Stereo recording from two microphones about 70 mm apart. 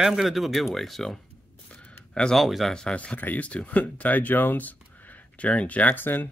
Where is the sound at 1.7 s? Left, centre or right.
Centre.